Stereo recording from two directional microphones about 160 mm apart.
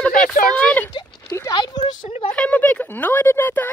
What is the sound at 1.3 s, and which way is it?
Speech, 25° left (ahead or behind).